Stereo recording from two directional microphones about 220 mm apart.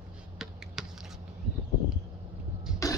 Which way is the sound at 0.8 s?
Centre (ahead or behind).